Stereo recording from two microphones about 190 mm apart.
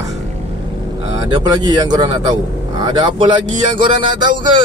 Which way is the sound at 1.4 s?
20° right (ahead or behind).